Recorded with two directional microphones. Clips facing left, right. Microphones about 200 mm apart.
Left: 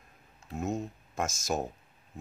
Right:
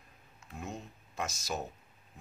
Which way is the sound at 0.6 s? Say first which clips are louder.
Left 10 dB; 45° left (ahead or behind).